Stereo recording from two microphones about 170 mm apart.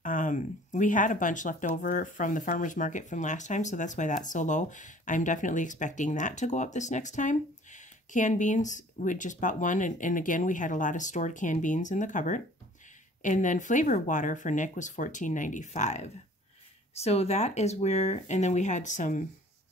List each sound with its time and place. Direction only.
0.0 s speech: 50° left (ahead or behind)